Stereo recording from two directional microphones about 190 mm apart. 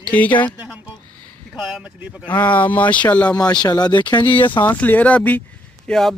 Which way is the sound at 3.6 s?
20° left (ahead or behind).